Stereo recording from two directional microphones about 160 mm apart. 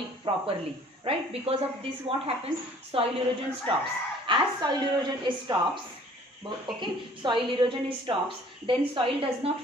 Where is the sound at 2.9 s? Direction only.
35° right (ahead or behind).